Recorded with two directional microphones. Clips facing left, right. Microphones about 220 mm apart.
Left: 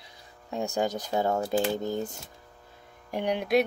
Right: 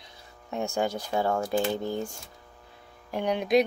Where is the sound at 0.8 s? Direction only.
20° left (ahead or behind).